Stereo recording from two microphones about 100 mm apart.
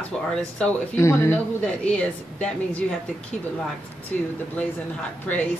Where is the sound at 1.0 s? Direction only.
30° left (ahead or behind).